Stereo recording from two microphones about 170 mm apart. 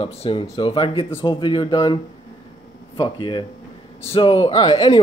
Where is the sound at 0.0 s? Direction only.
35° left (ahead or behind).